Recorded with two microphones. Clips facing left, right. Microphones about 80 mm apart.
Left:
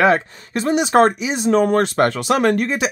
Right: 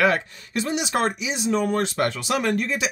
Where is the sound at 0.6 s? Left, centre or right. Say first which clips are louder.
Left 10 dB; left.